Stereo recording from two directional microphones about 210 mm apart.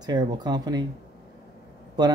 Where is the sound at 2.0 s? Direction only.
20° right (ahead or behind).